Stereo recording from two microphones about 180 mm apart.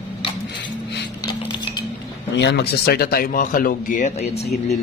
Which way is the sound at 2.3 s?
70° left (ahead or behind).